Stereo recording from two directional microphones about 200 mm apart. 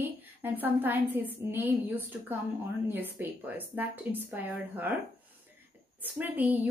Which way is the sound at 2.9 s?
10° right (ahead or behind).